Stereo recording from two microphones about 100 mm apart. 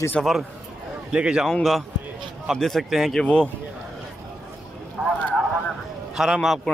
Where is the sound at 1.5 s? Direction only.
Centre (ahead or behind).